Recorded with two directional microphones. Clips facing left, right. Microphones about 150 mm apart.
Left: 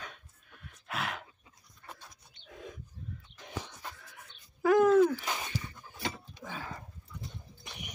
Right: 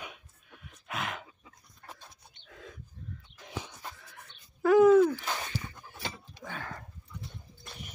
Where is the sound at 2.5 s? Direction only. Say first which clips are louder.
Left 3 dB; 15° left (ahead or behind).